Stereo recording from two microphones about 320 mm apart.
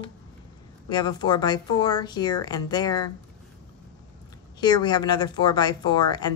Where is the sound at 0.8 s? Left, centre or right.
Centre.